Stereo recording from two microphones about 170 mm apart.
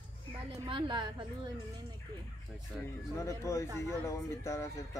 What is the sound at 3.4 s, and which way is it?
Speech, 15° left (ahead or behind).